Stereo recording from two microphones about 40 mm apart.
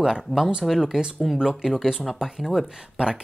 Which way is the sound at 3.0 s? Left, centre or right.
Right.